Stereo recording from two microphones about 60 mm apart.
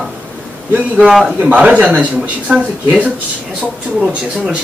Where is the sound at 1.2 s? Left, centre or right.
Right.